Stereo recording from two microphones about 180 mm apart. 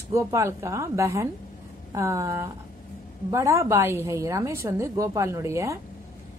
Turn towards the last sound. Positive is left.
turn(degrees=-15)  # may be behind; listen again after turning